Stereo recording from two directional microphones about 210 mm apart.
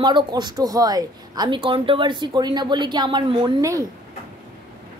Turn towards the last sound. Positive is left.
turn(degrees=-20)  # may be behind; listen again after turning